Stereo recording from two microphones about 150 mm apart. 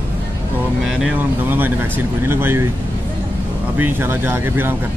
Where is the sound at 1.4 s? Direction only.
15° right (ahead or behind).